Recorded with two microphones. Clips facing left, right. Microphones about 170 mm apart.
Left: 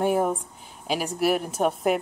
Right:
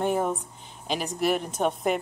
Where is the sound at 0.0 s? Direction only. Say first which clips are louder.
Left 3 dB; 10° left (ahead or behind).